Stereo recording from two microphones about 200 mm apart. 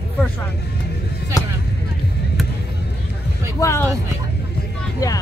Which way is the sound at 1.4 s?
15° left (ahead or behind).